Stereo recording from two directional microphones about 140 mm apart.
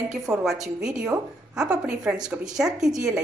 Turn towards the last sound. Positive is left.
turn(degrees=-5)  # may be behind; listen again after turning